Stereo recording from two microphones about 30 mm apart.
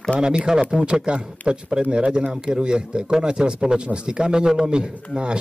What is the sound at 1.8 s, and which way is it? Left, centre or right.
A man's voice, right.